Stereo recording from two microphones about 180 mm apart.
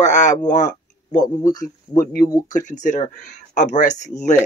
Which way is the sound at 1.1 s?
20° left (ahead or behind).